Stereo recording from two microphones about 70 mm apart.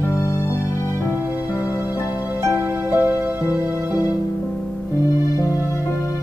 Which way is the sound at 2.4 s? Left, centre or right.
Right.